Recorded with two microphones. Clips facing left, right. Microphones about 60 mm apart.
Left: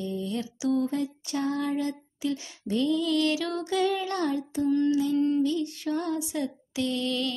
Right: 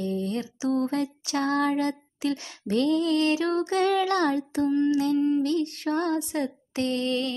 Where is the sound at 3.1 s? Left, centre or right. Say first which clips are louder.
Right 3 dB; right.